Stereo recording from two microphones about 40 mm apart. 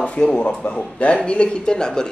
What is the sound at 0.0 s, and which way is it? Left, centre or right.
Speech, left.